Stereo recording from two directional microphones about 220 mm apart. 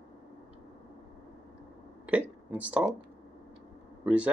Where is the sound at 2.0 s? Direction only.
5° right (ahead or behind).